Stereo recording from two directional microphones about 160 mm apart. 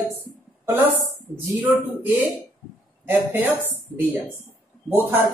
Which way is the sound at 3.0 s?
10° right (ahead or behind).